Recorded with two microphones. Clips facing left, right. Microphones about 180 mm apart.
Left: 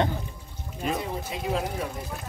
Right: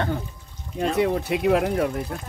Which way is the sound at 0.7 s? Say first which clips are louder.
Right 8 dB; 75° right (ahead or behind).